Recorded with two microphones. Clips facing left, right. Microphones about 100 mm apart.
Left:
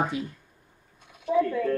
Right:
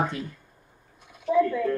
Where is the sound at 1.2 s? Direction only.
25° left (ahead or behind).